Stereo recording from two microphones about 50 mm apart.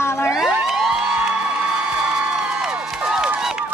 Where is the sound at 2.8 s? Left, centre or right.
Centre.